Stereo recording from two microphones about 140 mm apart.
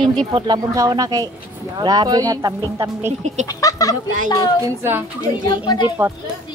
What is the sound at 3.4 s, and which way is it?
Speech, 25° left (ahead or behind).